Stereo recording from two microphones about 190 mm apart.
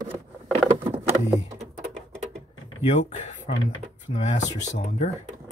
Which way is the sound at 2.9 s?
40° left (ahead or behind).